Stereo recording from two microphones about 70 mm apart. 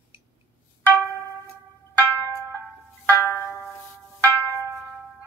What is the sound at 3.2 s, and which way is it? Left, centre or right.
Music, left.